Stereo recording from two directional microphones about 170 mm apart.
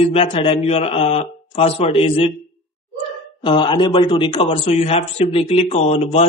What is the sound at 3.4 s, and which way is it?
Speech, 30° left (ahead or behind).